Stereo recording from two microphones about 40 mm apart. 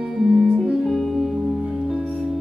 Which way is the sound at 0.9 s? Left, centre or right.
Centre.